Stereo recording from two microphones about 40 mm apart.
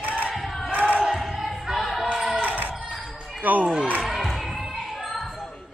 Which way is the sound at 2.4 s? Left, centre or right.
Right.